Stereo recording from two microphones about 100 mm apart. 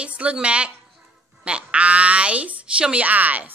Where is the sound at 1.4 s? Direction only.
10° right (ahead or behind).